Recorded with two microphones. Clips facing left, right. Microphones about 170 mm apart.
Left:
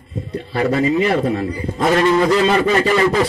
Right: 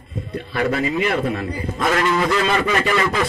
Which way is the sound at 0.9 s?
35° left (ahead or behind).